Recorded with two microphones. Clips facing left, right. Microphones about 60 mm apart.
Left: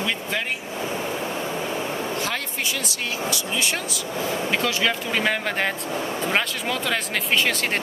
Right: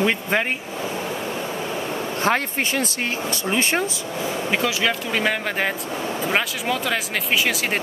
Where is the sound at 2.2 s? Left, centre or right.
Right.